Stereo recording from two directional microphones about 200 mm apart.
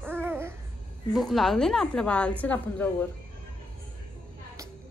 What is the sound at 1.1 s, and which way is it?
A woman's voice, centre (ahead or behind).